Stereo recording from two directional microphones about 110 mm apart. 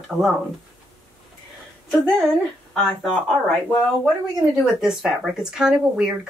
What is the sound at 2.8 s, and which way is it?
Speech, 5° left (ahead or behind).